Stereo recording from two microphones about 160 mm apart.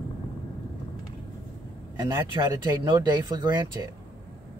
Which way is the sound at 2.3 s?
25° right (ahead or behind).